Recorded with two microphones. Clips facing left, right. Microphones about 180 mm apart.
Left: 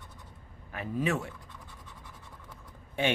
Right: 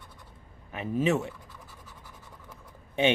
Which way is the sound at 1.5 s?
5° right (ahead or behind).